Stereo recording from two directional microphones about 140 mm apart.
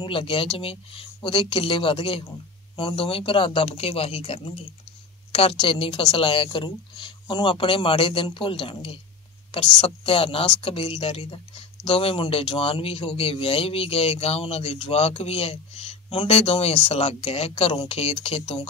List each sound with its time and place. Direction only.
0.0 s a woman's voice: 40° left (ahead or behind)